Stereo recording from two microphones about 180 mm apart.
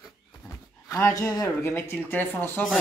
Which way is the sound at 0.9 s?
15° left (ahead or behind).